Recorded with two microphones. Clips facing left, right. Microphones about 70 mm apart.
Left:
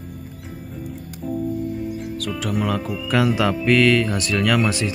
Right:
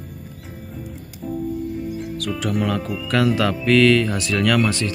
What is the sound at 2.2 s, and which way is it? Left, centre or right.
Speech, centre.